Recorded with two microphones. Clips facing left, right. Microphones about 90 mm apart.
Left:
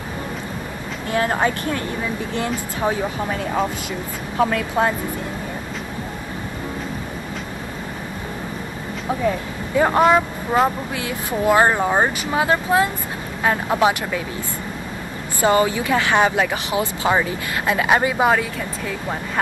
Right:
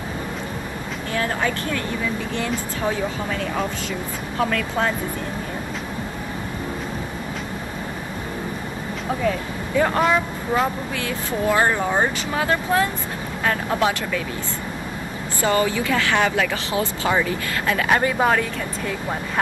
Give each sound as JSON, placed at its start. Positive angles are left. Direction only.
{"t": 1.1, "sound": "speech", "side_deg": 30}
{"t": 4.4, "sound": "speech", "side_deg": 20}
{"t": 9.8, "sound": "speech", "side_deg": 25}
{"t": 15.4, "sound": "speech", "side_deg": 25}